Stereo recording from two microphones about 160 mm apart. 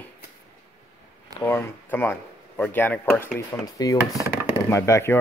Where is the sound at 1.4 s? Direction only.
15° left (ahead or behind).